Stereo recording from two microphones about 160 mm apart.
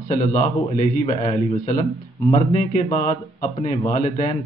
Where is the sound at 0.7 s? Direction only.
45° left (ahead or behind).